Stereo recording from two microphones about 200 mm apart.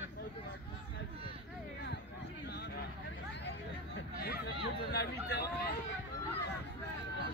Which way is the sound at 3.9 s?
55° left (ahead or behind).